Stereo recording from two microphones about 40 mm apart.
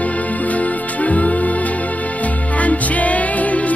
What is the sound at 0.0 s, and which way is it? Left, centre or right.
Music, left.